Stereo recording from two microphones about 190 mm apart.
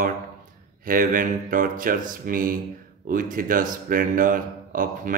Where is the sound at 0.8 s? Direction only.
45° right (ahead or behind).